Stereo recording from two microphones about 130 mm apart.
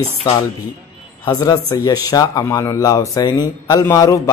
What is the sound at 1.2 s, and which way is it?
A man's voice, 30° left (ahead or behind).